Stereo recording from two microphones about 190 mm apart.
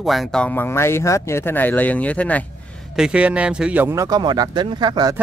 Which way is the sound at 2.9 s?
5° right (ahead or behind).